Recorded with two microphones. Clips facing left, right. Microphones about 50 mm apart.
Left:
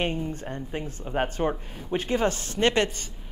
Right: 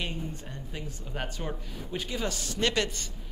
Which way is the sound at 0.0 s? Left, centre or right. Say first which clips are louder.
Left 7 dB; left.